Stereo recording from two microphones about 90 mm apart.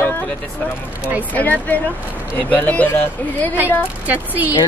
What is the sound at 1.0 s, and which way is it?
Speech, 15° right (ahead or behind).